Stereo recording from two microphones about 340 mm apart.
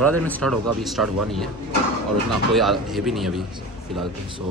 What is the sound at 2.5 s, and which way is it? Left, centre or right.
Speech, centre.